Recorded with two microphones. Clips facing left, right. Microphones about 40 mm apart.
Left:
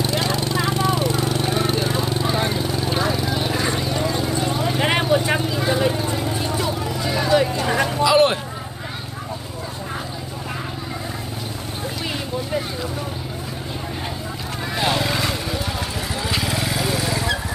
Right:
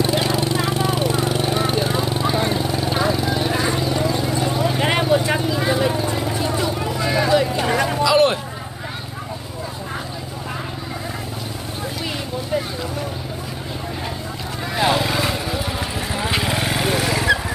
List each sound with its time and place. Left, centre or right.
0.0 s vehicle: centre
7.7 s a sound: centre
14.8 s vehicle: centre
16.2 s vehicle: right